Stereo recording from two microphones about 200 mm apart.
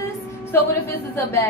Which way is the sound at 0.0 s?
15° left (ahead or behind).